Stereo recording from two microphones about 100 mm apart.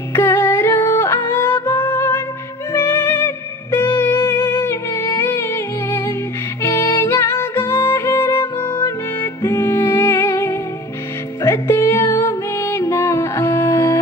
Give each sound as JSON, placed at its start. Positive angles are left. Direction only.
{"t": 0.1, "sound": "music", "side_deg": 25}